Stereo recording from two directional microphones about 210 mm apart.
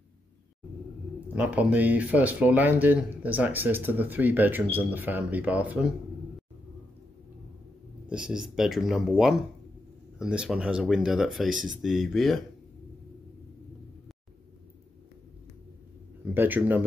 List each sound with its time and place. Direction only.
1.3 s speech: 5° right (ahead or behind)
8.1 s speech: 5° right (ahead or behind)
16.3 s speech: 10° right (ahead or behind)